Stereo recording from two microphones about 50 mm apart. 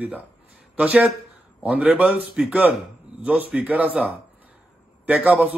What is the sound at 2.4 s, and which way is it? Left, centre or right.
Speech, centre.